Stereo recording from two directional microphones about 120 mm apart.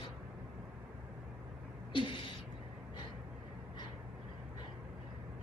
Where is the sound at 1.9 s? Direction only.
45° left (ahead or behind).